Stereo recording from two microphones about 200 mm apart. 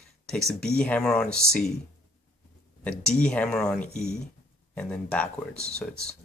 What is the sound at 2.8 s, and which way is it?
Speech, 5° left (ahead or behind).